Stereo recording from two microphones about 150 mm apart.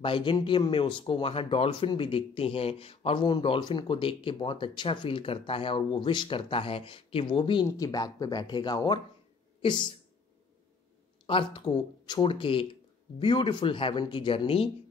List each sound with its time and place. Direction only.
0.0 s speech: 35° left (ahead or behind)
7.6 s speech: 20° left (ahead or behind)
11.2 s speech: 35° left (ahead or behind)